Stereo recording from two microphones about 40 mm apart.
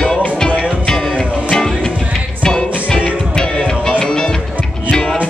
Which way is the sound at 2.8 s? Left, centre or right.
Left.